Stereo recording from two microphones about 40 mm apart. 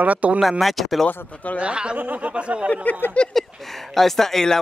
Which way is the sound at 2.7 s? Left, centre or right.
Left.